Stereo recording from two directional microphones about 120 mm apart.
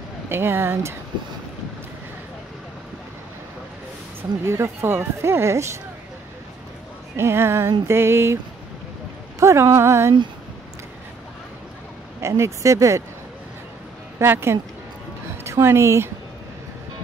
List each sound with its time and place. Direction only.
0.3 s speech: 20° right (ahead or behind)
4.5 s speech: 20° right (ahead or behind)
7.2 s speech: 20° right (ahead or behind)
9.4 s speech: 25° right (ahead or behind)
12.2 s speech: 25° right (ahead or behind)
14.1 s a woman's voice: 20° right (ahead or behind)